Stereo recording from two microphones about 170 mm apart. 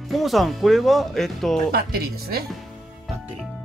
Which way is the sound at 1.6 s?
65° right (ahead or behind).